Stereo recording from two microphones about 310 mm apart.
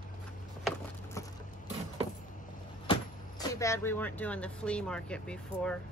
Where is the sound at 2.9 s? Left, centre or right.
Centre.